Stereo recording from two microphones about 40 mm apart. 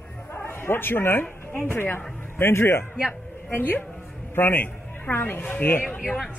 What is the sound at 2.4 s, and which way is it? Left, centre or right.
Speech, left.